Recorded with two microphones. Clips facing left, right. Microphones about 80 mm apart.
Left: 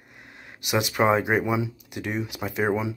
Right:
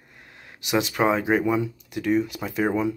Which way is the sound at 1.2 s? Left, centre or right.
Centre.